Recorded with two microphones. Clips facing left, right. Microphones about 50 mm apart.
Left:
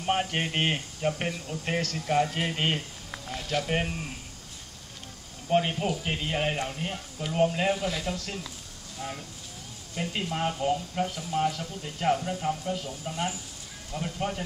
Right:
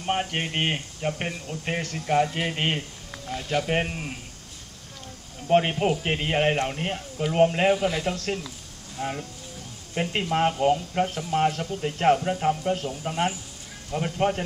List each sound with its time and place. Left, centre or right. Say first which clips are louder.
0.0 s speech: right 1 dB; centre; by 4.1 s right
5.5 s speech: right 5 dB; right
7.7 s speech: right 6 dB; right
10.0 s speech: right 6 dB; right